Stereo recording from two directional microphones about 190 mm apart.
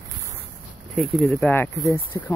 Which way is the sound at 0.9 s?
Centre (ahead or behind).